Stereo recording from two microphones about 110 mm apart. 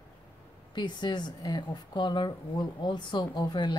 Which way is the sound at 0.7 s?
45° left (ahead or behind).